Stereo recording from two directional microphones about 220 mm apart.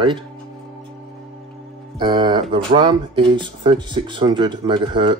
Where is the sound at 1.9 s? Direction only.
20° right (ahead or behind).